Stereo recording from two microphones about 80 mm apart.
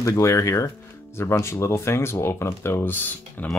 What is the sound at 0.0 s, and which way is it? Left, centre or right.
Speech, left.